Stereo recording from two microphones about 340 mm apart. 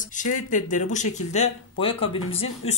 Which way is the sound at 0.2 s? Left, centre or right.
Left.